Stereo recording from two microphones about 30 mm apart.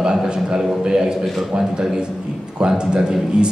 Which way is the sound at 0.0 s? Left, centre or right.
Right.